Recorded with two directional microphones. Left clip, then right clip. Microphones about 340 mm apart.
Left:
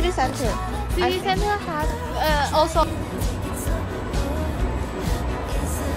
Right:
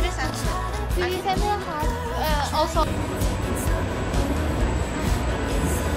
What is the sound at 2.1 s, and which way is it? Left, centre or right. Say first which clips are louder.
Music: left 5 dB; left.